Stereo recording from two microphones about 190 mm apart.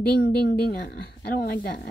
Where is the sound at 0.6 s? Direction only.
50° left (ahead or behind).